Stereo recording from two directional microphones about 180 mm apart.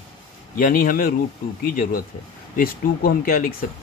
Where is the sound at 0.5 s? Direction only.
50° left (ahead or behind).